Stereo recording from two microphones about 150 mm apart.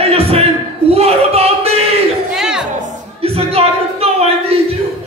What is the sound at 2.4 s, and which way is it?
Music, 5° right (ahead or behind).